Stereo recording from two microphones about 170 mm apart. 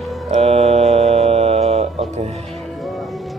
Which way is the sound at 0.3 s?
40° right (ahead or behind).